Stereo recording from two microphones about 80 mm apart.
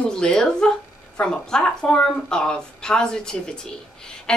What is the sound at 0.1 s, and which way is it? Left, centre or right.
Speech, centre.